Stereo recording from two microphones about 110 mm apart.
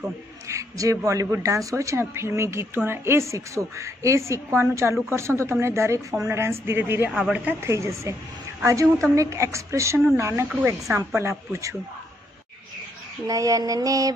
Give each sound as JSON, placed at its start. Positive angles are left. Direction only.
{"t": 0.0, "sound": "a man's voice", "side_deg": -30}
{"t": 7.1, "sound": "speech", "side_deg": -10}
{"t": 7.6, "sound": "a man's voice", "side_deg": -25}
{"t": 13.3, "sound": "mantra", "side_deg": -30}